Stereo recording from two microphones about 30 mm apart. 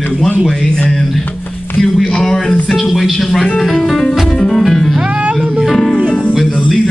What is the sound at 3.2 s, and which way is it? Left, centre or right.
Speech, centre.